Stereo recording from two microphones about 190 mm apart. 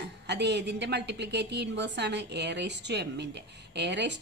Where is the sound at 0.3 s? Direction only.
60° right (ahead or behind).